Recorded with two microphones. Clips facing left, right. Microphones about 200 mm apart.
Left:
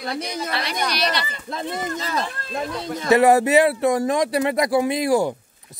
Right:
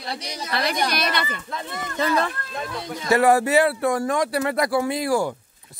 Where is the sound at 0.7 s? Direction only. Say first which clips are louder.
Right 1 dB; 50° right (ahead or behind).